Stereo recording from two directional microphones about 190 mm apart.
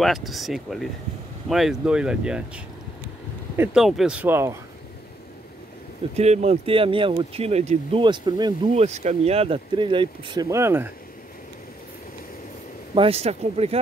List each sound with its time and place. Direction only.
0.0 s speech: centre (ahead or behind)
6.1 s speech: 35° right (ahead or behind)
8.7 s speech: 35° right (ahead or behind); by 10.9 s 15° right (ahead or behind)
12.9 s speech: 30° right (ahead or behind)